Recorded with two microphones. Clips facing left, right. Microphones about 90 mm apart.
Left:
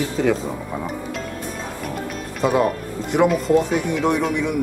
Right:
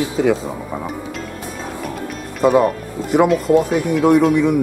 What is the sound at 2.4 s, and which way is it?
Speech, centre (ahead or behind).